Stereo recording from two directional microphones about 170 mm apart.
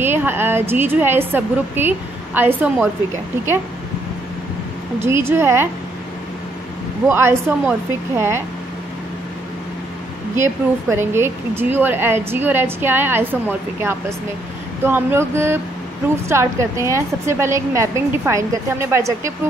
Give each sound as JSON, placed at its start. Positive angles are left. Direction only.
{"t": 0.0, "sound": "speech", "side_deg": -10}
{"t": 5.0, "sound": "speech", "side_deg": -15}
{"t": 7.1, "sound": "speech", "side_deg": -15}
{"t": 10.3, "sound": "speech", "side_deg": -15}